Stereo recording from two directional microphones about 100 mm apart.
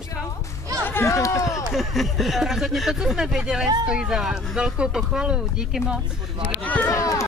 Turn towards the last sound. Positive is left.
turn(degrees=30)  # may be behind; listen again after turning